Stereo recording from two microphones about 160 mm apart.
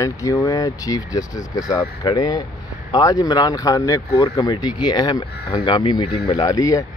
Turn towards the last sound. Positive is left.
turn(degrees=20)  # may be behind; listen again after turning